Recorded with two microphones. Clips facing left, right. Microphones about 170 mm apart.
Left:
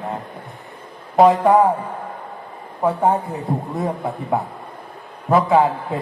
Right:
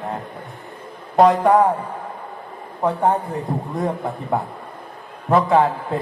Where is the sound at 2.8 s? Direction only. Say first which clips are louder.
Left 1 dB; 5° left (ahead or behind).